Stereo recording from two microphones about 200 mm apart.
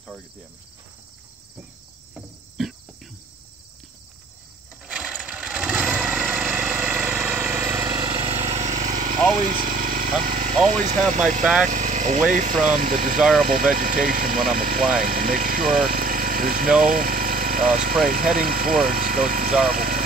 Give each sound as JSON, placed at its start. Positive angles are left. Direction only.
{"t": 2.1, "sound": "cricket", "side_deg": 0}
{"t": 4.8, "sound": "vehicle", "side_deg": -5}
{"t": 11.6, "sound": "speech", "side_deg": -35}
{"t": 13.2, "sound": "speech", "side_deg": 0}
{"t": 13.5, "sound": "speech", "side_deg": -45}